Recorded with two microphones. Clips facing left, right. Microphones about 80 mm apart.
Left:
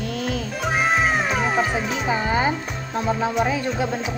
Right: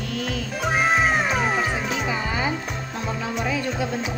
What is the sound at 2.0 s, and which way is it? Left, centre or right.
Music, left.